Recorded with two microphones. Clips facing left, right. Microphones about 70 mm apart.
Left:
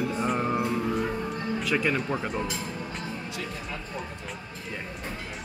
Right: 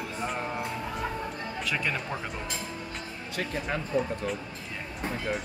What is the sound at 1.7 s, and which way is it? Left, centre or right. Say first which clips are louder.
Speech: left 5 dB; centre.